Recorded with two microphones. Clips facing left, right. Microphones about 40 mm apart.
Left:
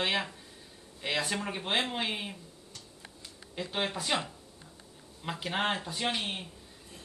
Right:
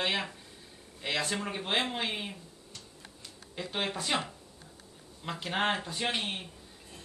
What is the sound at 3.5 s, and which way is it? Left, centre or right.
Speech, centre.